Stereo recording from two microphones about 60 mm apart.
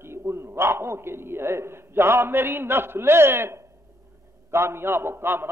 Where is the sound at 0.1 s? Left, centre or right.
Right.